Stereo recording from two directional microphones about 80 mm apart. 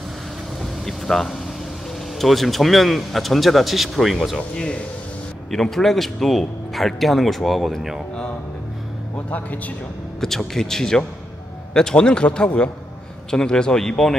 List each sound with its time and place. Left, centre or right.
0.6 s vehicle: centre
2.1 s speech: centre
9.3 s speech: left
10.2 s a man's voice: centre